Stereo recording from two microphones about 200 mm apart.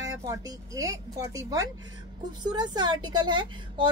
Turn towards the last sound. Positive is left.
turn(degrees=-25)  # may be behind; listen again after turning